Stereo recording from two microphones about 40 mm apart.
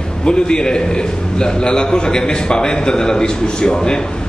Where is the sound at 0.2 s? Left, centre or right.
Left.